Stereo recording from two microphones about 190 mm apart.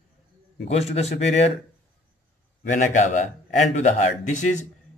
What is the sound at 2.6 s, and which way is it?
Speech, 40° left (ahead or behind).